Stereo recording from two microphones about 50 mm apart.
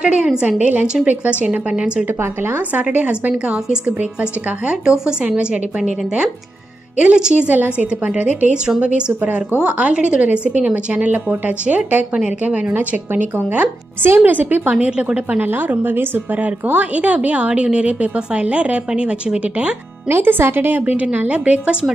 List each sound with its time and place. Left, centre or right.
0.0 s a woman's voice: centre
9.2 s a woman's voice: right
12.7 s a woman's voice: right
15.4 s a woman's voice: right
16.4 s a woman's voice: right
20.1 s a woman's voice: right